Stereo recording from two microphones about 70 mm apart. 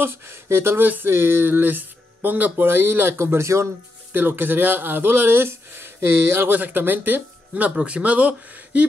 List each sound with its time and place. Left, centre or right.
0.0 s speech: right
4.1 s speech: right